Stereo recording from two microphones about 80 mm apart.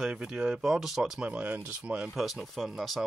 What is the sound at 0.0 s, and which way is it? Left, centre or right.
Speech, centre.